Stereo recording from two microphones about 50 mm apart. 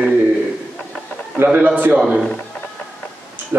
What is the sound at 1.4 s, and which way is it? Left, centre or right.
Speech, right.